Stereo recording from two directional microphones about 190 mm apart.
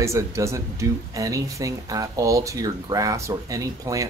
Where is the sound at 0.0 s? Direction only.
15° right (ahead or behind).